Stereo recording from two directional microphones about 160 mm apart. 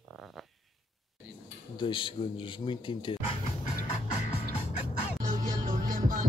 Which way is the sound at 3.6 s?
50° left (ahead or behind).